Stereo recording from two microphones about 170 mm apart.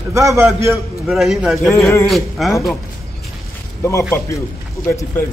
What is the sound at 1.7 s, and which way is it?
Speech, 15° left (ahead or behind).